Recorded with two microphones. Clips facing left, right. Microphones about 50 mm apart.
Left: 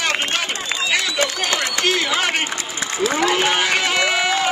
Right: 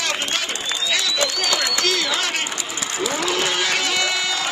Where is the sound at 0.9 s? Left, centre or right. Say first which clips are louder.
Left 2 dB; left.